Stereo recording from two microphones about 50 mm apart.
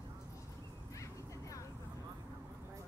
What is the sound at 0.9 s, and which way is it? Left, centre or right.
Vehicle, left.